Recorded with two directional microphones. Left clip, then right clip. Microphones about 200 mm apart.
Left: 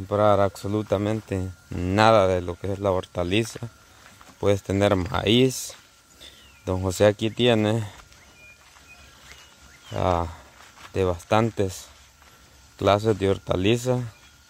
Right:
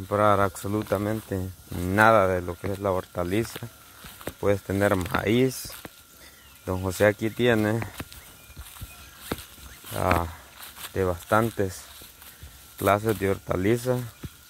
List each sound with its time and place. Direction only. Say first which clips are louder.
0.1 s speech: left 2 dB; 25° left (ahead or behind)
4.4 s speech: left 2 dB; 30° left (ahead or behind)
6.6 s speech: left 2 dB; 25° left (ahead or behind)
9.9 s speech: left 1 dB; 25° left (ahead or behind)
12.7 s speech: left 2 dB; 30° left (ahead or behind)